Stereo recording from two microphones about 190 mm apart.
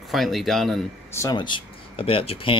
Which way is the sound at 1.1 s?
20° left (ahead or behind).